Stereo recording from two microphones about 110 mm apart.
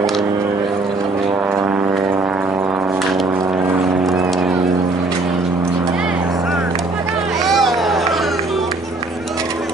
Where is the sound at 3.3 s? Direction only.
20° right (ahead or behind).